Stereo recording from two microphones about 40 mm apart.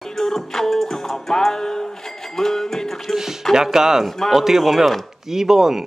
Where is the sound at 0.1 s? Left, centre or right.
Centre.